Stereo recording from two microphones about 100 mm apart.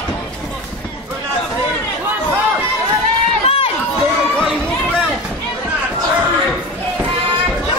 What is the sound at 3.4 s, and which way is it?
Run, 70° left (ahead or behind).